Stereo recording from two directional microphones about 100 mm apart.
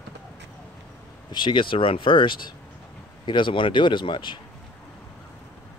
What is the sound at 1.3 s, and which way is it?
Speech, 50° left (ahead or behind).